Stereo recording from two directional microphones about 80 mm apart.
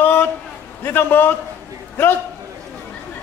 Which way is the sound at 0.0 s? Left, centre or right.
Left.